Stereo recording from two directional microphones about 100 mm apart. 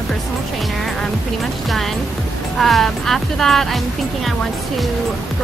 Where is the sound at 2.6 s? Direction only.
Centre (ahead or behind).